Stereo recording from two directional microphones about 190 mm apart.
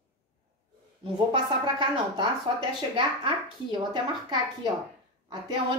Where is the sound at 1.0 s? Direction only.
25° right (ahead or behind).